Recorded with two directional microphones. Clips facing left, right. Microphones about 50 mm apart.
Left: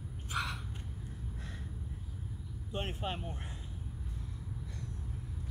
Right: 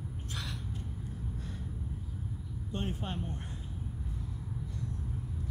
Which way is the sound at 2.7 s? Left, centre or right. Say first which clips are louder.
Even; left.